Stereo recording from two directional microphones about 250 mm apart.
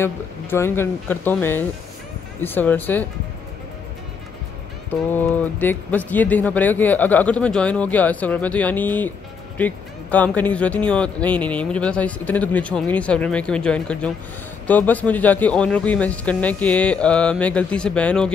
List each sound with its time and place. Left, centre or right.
0.0 s speech: centre
5.1 s speech: centre